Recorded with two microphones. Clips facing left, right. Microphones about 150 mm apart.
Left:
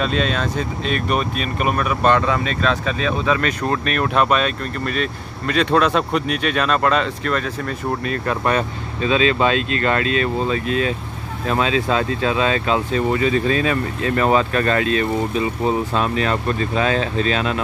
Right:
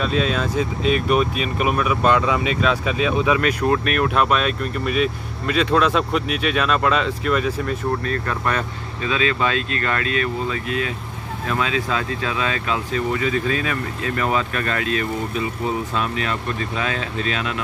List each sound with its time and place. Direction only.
0.0 s speech: 5° right (ahead or behind)
8.1 s speech: 20° left (ahead or behind)